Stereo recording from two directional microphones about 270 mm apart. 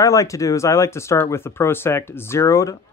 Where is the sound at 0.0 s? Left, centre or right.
Centre.